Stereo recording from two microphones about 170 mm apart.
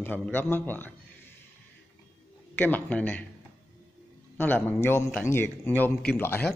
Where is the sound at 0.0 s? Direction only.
10° left (ahead or behind).